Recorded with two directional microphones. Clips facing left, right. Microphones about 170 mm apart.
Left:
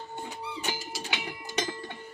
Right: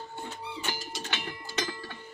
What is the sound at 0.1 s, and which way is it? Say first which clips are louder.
Music: left 1 dB; 15° left (ahead or behind).